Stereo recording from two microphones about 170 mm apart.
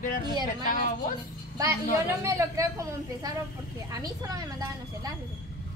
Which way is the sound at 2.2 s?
20° right (ahead or behind).